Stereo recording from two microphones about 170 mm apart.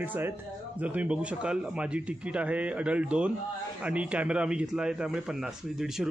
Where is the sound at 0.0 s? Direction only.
10° right (ahead or behind).